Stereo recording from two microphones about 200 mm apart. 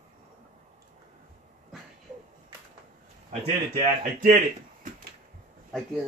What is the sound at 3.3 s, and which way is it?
A man's voice, 40° right (ahead or behind).